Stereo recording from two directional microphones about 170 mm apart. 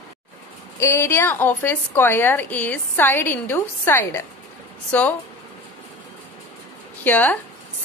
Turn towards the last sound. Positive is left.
turn(degrees=10)  # may be behind; listen again after turning